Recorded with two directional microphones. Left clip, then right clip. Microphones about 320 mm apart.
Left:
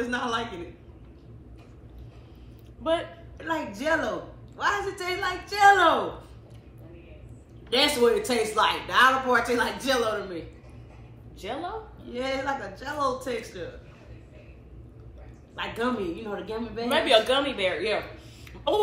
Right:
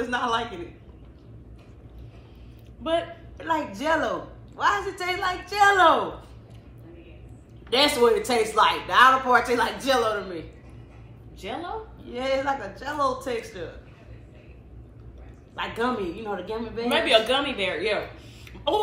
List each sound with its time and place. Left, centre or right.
0.0 s a woman's voice: centre
2.8 s a woman's voice: centre
7.7 s a woman's voice: centre
11.4 s a woman's voice: centre
15.5 s a woman's voice: centre